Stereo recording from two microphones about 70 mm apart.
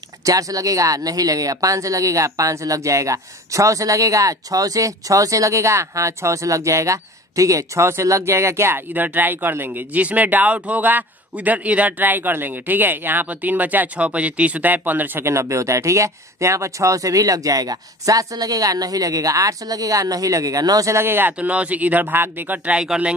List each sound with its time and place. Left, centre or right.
0.2 s speech: right
15.2 s speech: right
20.9 s speech: right
21.4 s speech: centre
22.8 s speech: centre